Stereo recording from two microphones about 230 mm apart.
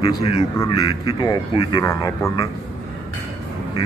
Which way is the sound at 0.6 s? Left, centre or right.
Centre.